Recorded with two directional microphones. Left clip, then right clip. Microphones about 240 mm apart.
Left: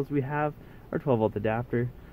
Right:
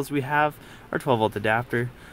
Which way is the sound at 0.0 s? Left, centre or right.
Centre.